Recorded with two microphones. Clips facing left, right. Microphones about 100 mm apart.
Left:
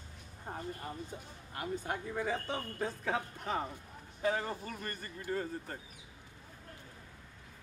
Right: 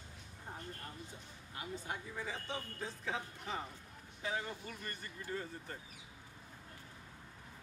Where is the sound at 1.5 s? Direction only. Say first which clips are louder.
Left 6 dB; 55° left (ahead or behind).